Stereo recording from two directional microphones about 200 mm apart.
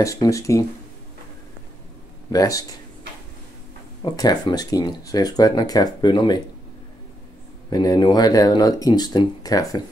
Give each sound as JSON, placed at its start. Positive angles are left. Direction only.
{"t": 0.0, "sound": "speech", "side_deg": 15}
{"t": 2.3, "sound": "speech", "side_deg": 15}
{"t": 4.0, "sound": "speech", "side_deg": 20}
{"t": 7.7, "sound": "speech", "side_deg": 20}